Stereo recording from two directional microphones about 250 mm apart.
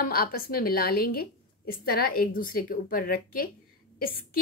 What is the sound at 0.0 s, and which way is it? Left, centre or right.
A woman's voice, left.